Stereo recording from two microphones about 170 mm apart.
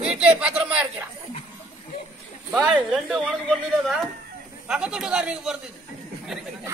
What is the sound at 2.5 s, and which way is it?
A woman's voice, 5° right (ahead or behind).